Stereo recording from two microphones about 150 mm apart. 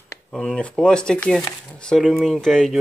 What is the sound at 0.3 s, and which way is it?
Speech, 5° left (ahead or behind).